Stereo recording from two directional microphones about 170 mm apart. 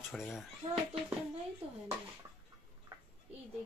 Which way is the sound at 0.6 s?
35° right (ahead or behind).